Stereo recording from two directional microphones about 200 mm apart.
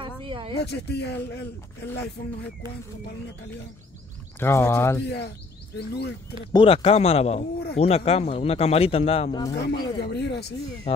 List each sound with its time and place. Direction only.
0.0 s a sound: 25° right (ahead or behind)
0.6 s speech: 55° left (ahead or behind)
4.4 s speech: 10° left (ahead or behind)
5.0 s speech: 55° left (ahead or behind)
6.5 s speech: 30° left (ahead or behind)
9.5 s speech: 55° left (ahead or behind)